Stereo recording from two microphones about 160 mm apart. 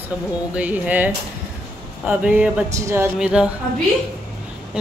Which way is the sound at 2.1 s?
10° right (ahead or behind).